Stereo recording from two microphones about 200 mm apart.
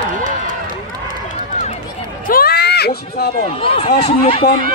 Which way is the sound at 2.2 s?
50° left (ahead or behind).